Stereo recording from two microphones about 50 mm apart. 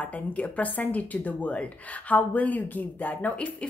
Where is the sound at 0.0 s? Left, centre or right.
Left.